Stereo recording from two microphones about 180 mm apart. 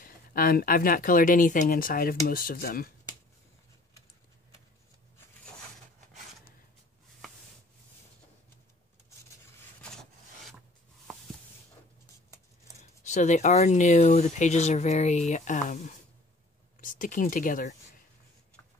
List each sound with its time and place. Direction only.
0.0 s speech: 55° left (ahead or behind)
12.7 s speech: 40° left (ahead or behind)